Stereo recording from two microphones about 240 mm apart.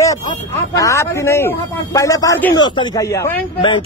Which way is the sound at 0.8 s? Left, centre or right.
Centre.